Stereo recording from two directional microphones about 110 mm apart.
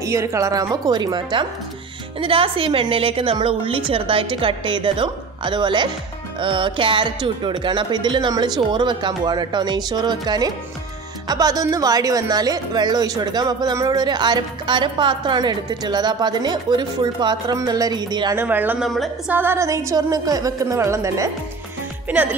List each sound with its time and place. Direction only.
0.0 s a woman's voice: 25° right (ahead or behind)
2.1 s a woman's voice: 55° right (ahead or behind)
18.3 s speech: 15° right (ahead or behind)
18.8 s a woman's voice: centre (ahead or behind)
19.2 s a woman's voice: 20° right (ahead or behind)
22.0 s speech: 15° right (ahead or behind)